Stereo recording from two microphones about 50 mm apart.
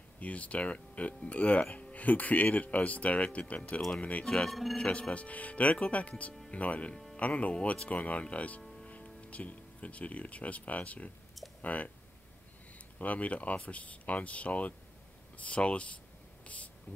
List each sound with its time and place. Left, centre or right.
0.2 s speech: left
4.5 s speech: centre
4.7 s speech: left
13.0 s speech: left